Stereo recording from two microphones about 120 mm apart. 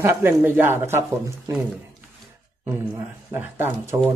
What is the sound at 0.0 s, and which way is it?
Speech, 20° right (ahead or behind).